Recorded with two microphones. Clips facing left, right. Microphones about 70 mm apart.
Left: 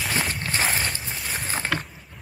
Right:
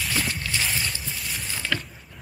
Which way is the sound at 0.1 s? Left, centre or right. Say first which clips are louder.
Left 2 dB; left.